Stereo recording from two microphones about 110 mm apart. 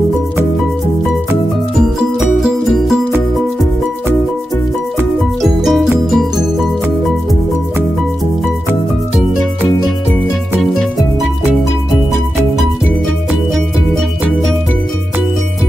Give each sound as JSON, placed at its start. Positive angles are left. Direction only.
{"t": 1.8, "sound": "music", "side_deg": -5}
{"t": 5.4, "sound": "music", "side_deg": 0}
{"t": 10.6, "sound": "music", "side_deg": 0}